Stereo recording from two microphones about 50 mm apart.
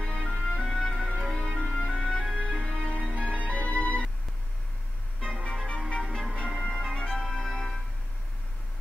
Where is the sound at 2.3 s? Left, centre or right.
Centre.